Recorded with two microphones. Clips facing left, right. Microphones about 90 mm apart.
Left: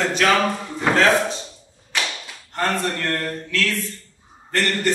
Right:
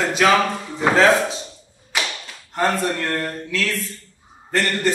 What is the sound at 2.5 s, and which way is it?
A man's voice, 10° right (ahead or behind).